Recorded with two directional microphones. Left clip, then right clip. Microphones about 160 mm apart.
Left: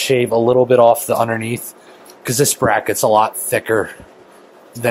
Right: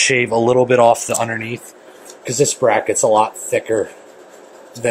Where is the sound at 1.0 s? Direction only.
20° left (ahead or behind).